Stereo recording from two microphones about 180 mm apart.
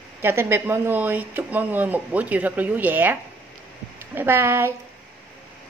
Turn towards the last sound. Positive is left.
turn(degrees=-15)  # may be behind; listen again after turning